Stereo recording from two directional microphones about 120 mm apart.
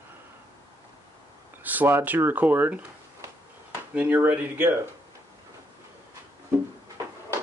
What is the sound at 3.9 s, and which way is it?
Speech, 15° right (ahead or behind).